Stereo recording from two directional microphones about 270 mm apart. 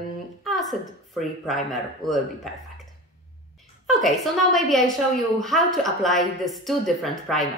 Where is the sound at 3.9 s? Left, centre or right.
Centre.